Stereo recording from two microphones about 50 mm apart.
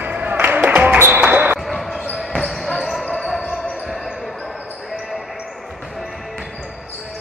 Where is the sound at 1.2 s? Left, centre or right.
Right.